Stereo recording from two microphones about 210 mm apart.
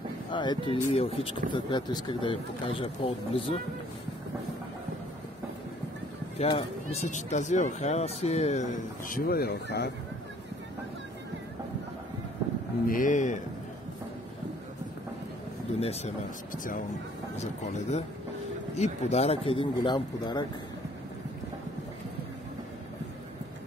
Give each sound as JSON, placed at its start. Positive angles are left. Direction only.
{"t": 0.3, "sound": "speech", "side_deg": 20}
{"t": 6.3, "sound": "speech", "side_deg": 30}
{"t": 9.1, "sound": "speech", "side_deg": 45}
{"t": 12.8, "sound": "speech", "side_deg": 40}
{"t": 15.8, "sound": "speech", "side_deg": 30}
{"t": 16.5, "sound": "speech", "side_deg": 40}